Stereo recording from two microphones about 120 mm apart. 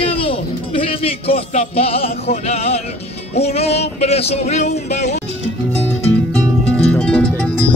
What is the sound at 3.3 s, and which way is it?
Music, 60° left (ahead or behind).